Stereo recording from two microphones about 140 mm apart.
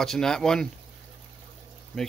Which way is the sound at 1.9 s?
5° left (ahead or behind).